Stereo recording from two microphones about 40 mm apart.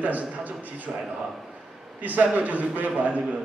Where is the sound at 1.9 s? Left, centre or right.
Right.